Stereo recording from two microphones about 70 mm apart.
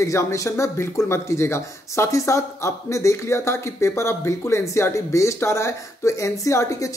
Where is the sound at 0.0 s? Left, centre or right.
Left.